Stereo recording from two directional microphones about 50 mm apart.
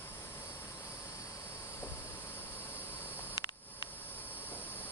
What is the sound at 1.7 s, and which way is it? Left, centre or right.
Cricket, left.